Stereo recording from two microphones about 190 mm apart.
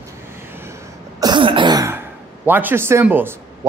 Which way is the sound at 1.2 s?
25° right (ahead or behind).